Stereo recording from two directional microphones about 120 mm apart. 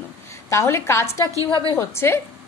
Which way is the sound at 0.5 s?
20° left (ahead or behind).